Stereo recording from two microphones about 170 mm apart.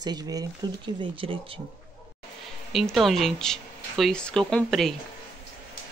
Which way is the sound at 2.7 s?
Centre (ahead or behind).